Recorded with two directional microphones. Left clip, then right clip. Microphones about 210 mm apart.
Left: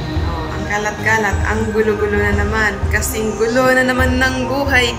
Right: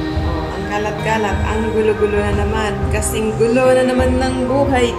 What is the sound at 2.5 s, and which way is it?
Music, 10° right (ahead or behind).